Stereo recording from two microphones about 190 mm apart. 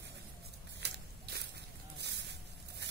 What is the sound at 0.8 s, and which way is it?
Biting, 60° right (ahead or behind).